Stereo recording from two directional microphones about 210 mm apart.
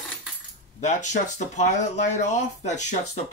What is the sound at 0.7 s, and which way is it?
Speech, 35° left (ahead or behind).